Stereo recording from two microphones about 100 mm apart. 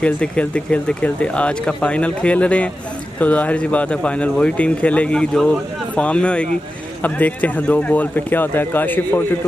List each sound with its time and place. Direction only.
0.0 s speech: 10° left (ahead or behind)